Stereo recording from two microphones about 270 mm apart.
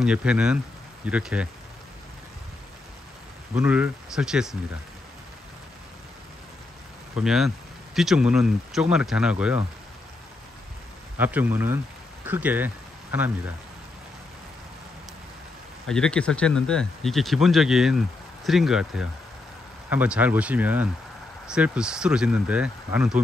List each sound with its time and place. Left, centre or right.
0.0 s speech: centre
3.5 s speech: centre
7.2 s speech: centre
11.1 s speech: centre
15.9 s speech: centre